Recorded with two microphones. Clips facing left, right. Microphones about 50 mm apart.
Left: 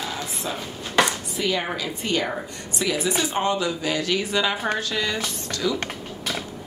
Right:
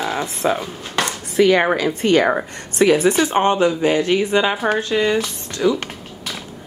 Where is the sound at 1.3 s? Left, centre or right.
Right.